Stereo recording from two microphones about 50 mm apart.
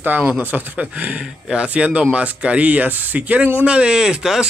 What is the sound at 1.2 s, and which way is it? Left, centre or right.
A man's voice, centre.